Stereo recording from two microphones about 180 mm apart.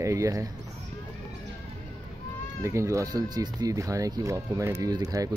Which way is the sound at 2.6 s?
15° right (ahead or behind).